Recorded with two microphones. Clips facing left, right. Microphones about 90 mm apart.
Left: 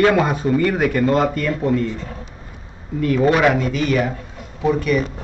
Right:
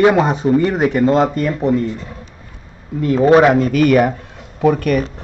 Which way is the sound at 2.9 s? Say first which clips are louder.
Right 5 dB; 25° right (ahead or behind).